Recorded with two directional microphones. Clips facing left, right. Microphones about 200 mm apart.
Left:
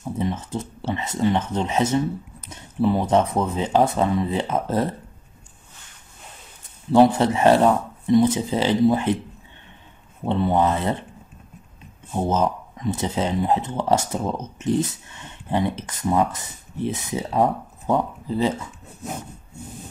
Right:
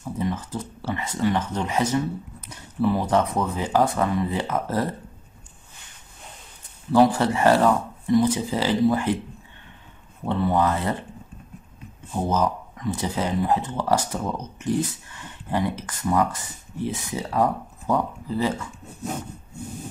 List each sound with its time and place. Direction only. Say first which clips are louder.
0.2 s speech: left 1 dB; 25° left (ahead or behind)
6.9 s speech: left 2 dB; 25° left (ahead or behind)
10.2 s speech: left 2 dB; 25° left (ahead or behind)
12.1 s speech: left 2 dB; 20° left (ahead or behind)